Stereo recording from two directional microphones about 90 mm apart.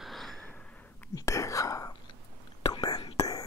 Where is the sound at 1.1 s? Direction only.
35° left (ahead or behind).